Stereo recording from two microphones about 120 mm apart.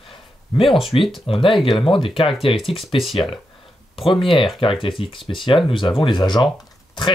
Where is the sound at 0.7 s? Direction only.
Centre (ahead or behind).